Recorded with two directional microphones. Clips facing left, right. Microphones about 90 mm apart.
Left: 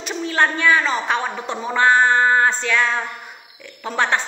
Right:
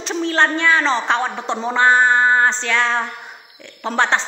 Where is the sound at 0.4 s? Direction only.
25° right (ahead or behind).